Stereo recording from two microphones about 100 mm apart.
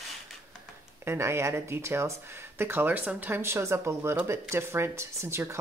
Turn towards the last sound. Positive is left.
turn(degrees=-25)  # may be behind; listen again after turning